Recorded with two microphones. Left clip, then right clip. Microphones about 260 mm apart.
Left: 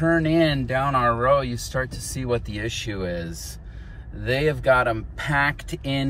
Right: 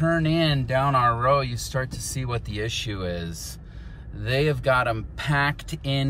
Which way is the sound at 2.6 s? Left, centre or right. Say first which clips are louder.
Even; centre.